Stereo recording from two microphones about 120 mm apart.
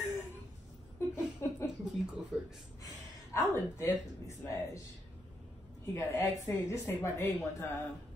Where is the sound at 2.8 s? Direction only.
25° left (ahead or behind).